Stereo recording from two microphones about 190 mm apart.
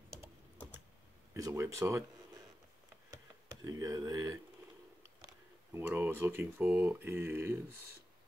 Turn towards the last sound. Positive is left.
turn(degrees=-10)  # may be behind; listen again after turning